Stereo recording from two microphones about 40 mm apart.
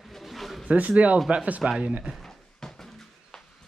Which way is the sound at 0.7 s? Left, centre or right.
Right.